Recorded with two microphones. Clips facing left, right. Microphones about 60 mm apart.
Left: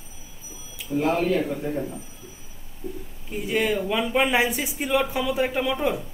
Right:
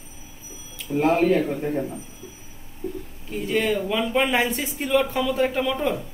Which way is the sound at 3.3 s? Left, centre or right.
Centre.